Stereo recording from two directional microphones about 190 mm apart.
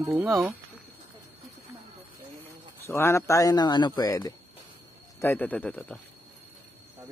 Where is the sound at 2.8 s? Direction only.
15° left (ahead or behind).